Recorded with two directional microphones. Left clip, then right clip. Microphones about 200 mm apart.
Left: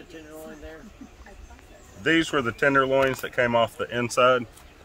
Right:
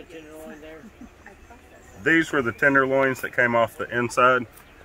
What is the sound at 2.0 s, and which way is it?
Speech, 25° left (ahead or behind).